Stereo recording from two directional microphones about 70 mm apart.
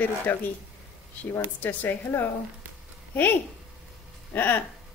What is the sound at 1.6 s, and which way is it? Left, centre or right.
Speech, left.